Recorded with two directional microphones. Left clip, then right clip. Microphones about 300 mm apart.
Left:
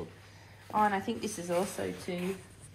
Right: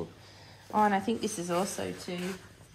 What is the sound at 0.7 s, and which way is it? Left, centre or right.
Speech, right.